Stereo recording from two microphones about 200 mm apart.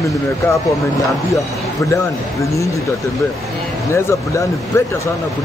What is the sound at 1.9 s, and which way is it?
Speech, 15° left (ahead or behind).